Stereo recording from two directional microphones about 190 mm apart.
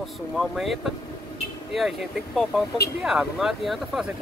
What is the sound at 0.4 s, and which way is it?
Speech, centre (ahead or behind).